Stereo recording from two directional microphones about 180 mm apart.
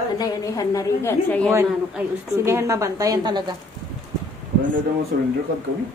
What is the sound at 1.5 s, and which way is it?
A woman's voice, 15° right (ahead or behind).